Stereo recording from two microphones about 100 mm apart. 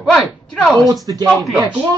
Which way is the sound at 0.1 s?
10° left (ahead or behind).